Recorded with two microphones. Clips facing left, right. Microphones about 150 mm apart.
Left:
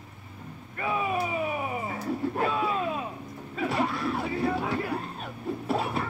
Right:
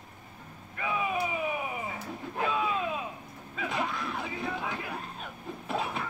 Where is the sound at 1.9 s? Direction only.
45° left (ahead or behind).